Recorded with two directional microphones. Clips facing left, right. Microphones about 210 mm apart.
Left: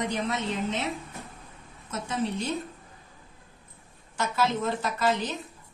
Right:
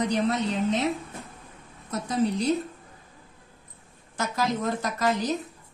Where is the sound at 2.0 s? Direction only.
35° right (ahead or behind).